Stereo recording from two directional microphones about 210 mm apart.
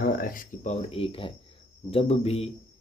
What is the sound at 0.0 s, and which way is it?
Speech, 40° left (ahead or behind).